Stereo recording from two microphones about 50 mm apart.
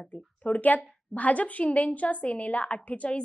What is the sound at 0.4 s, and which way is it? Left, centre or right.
A woman's voice, left.